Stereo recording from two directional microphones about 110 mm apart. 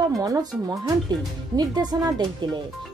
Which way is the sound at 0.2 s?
35° right (ahead or behind).